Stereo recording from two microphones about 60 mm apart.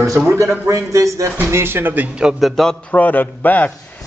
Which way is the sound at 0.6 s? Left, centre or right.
Right.